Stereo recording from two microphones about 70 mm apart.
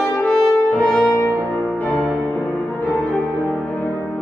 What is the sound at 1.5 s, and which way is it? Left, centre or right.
Music, left.